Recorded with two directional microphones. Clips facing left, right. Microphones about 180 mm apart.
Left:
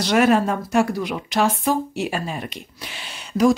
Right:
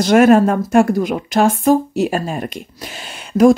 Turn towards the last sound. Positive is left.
turn(degrees=-50)  # may be behind; listen again after turning